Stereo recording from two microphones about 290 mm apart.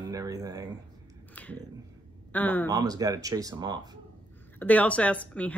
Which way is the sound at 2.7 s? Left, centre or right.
Centre.